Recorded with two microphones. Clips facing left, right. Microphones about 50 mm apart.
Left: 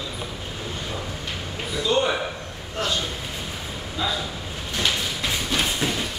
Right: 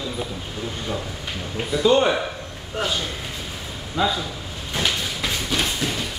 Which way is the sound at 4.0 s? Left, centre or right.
Right.